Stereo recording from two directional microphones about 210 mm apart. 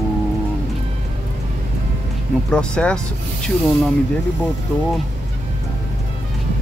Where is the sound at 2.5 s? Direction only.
5° left (ahead or behind).